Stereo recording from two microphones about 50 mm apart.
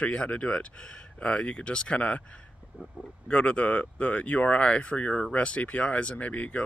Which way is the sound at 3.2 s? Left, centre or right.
Left.